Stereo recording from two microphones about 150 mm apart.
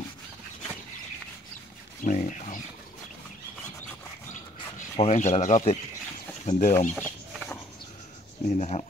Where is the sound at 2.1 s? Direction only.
55° left (ahead or behind).